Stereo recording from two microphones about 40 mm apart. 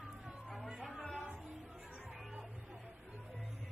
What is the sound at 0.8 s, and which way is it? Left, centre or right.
Music, centre.